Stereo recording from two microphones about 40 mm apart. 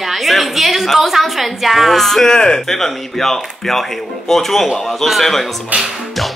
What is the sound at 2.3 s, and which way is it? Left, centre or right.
Speech, centre.